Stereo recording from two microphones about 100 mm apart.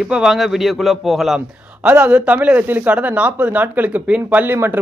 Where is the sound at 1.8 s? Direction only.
15° right (ahead or behind).